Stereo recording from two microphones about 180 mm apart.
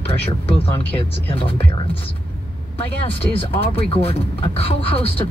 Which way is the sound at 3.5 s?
30° left (ahead or behind).